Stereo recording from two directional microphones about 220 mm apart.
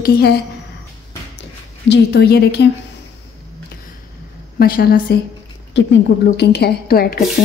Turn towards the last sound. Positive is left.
turn(degrees=45)  # may be behind; listen again after turning